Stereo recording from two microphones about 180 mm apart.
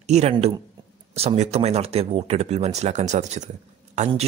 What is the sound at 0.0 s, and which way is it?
A man's voice, 40° right (ahead or behind).